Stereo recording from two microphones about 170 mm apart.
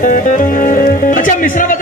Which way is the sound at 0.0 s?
50° left (ahead or behind).